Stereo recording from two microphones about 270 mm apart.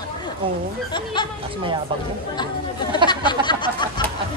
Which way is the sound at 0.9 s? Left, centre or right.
Centre.